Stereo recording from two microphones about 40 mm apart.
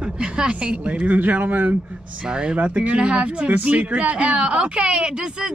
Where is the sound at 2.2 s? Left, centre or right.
Right.